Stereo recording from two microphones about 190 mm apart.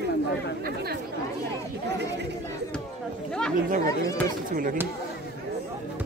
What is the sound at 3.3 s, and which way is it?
Speech, 5° left (ahead or behind).